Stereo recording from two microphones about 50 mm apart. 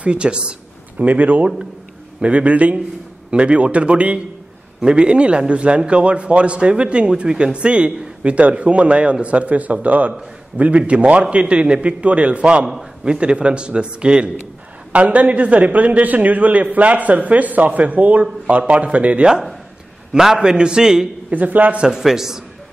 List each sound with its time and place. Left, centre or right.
0.0 s a sound: right
1.0 s a man's voice: right
20.1 s a man's voice: centre
21.3 s speech: right
21.8 s a man's voice: centre